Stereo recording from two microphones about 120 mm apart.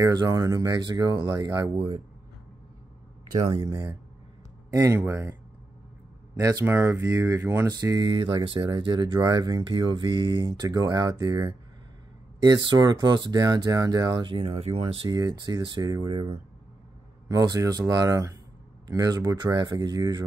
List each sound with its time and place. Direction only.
0.0 s speech: 30° right (ahead or behind)
3.6 s speech: 30° right (ahead or behind)
6.6 s speech: 20° right (ahead or behind)
7.6 s speech: 30° right (ahead or behind)
8.2 s speech: 45° right (ahead or behind)
14.6 s speech: 55° right (ahead or behind)
15.0 s speech: 30° right (ahead or behind)
17.3 s speech: 30° right (ahead or behind)